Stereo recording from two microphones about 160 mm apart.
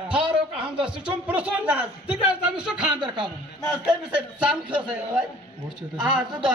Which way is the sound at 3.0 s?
30° right (ahead or behind).